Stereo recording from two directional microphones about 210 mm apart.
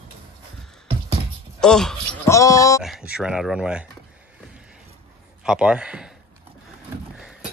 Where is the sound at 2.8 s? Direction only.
Centre (ahead or behind).